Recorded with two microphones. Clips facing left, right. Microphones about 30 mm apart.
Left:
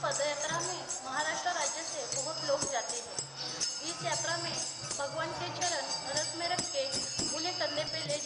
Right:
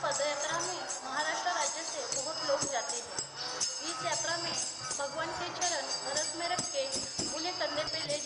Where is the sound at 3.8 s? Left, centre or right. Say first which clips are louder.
Even; centre.